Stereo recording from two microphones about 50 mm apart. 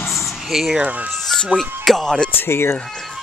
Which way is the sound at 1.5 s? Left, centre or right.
Centre.